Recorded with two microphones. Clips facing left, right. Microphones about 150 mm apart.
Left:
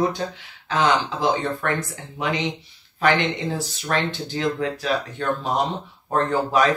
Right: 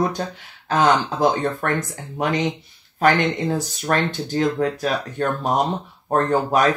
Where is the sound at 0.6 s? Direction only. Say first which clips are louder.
Right 3 dB; 45° right (ahead or behind).